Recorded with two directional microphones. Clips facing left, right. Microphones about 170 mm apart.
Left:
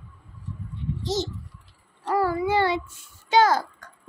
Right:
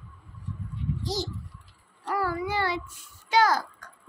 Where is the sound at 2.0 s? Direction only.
25° left (ahead or behind).